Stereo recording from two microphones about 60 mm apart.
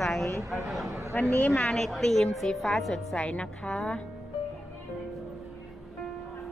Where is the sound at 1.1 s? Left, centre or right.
Left.